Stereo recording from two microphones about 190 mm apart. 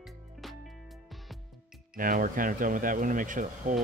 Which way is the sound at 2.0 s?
45° right (ahead or behind).